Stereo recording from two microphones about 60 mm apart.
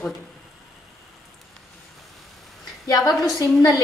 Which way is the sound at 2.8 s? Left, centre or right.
Left.